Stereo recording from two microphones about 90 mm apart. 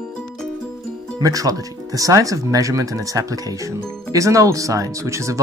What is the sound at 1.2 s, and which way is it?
Speech, 40° right (ahead or behind).